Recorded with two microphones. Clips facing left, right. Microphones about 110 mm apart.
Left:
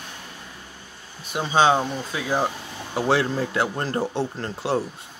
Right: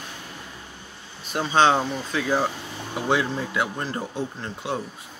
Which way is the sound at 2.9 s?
35° left (ahead or behind).